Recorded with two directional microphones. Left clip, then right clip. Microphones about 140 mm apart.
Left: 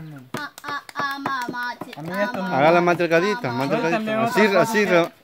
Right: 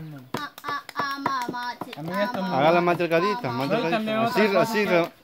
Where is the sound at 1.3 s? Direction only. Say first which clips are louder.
Left 2 dB; 45° left (ahead or behind).